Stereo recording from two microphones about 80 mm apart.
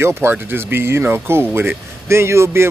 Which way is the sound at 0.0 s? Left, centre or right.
Right.